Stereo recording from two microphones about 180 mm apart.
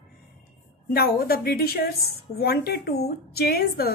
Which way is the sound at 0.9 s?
60° left (ahead or behind).